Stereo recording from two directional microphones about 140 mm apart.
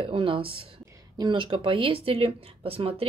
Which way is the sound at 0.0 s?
40° right (ahead or behind).